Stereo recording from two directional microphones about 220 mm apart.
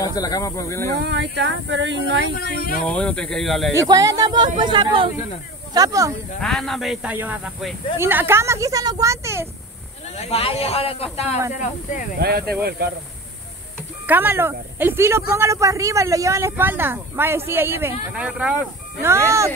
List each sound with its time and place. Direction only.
0.0 s speech: 15° left (ahead or behind)
0.9 s speech: 50° right (ahead or behind)
2.3 s speech: 40° left (ahead or behind)
2.8 s speech: 5° left (ahead or behind)
3.7 s speech: 15° right (ahead or behind)
6.4 s speech: centre (ahead or behind)
10.1 s speech: 30° left (ahead or behind)
12.2 s speech: 45° right (ahead or behind)
14.0 s speech: 10° right (ahead or behind)